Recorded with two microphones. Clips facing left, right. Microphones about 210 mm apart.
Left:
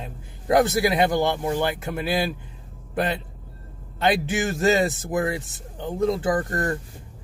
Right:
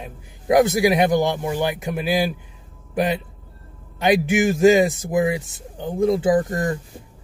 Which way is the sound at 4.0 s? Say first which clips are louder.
Right 5 dB; 15° right (ahead or behind).